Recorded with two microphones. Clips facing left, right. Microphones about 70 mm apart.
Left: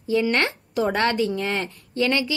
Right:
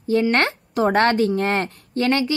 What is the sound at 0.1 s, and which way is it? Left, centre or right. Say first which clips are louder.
A woman's voice: right 3 dB; right.